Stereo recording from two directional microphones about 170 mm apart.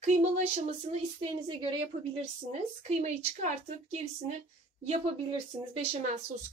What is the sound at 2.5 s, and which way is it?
A woman's voice, 45° right (ahead or behind).